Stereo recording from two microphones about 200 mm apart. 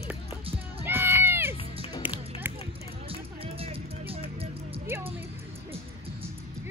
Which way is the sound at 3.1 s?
30° right (ahead or behind).